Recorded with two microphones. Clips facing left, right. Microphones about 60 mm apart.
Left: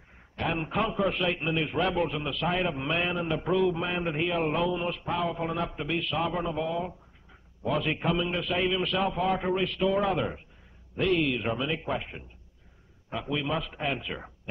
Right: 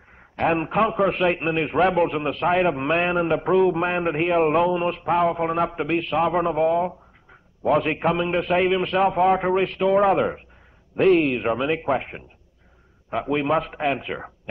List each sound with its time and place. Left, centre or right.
0.4 s a man's voice: right